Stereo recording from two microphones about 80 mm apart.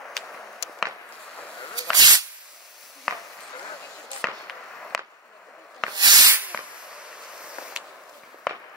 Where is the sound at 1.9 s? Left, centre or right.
Right.